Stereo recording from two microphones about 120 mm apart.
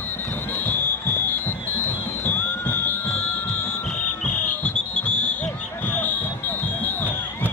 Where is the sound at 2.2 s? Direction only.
15° left (ahead or behind).